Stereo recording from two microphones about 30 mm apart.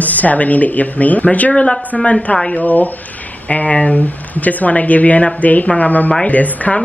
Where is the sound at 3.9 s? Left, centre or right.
Left.